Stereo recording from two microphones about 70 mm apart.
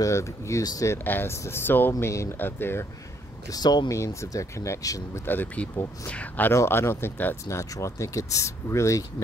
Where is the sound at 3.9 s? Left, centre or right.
Left.